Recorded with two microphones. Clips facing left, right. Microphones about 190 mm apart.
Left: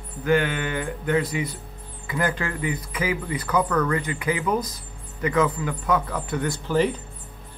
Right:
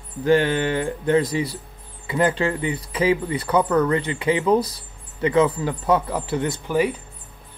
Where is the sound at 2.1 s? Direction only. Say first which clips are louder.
Right 6 dB; 25° right (ahead or behind).